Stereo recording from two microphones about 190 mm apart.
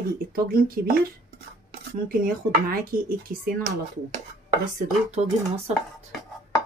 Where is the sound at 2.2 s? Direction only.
50° right (ahead or behind).